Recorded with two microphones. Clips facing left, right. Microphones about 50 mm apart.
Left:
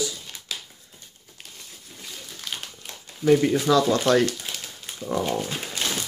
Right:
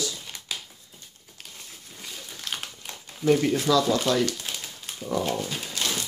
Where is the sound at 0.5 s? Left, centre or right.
Centre.